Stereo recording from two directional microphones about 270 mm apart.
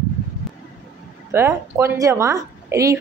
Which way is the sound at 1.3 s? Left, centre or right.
Centre.